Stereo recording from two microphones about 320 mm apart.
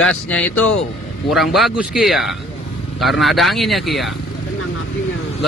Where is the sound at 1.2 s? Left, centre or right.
Centre.